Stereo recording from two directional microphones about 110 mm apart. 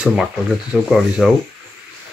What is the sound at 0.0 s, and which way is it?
Speech, 5° right (ahead or behind).